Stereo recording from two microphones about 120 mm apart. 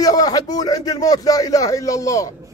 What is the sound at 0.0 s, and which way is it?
A man's voice, 30° left (ahead or behind).